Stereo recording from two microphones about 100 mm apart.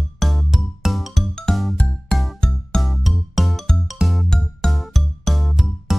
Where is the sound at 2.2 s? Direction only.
Centre (ahead or behind).